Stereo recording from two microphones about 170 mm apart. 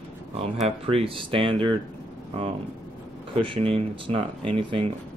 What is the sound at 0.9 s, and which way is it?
Speech, 35° right (ahead or behind).